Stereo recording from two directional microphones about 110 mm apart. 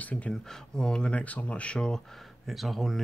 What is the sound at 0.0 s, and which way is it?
Speech, 10° left (ahead or behind).